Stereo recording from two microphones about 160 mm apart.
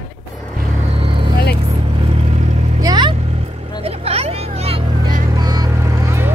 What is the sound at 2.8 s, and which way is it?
Vehicle, 25° right (ahead or behind).